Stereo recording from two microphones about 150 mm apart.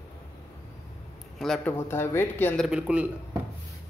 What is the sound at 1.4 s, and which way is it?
Speech, centre (ahead or behind).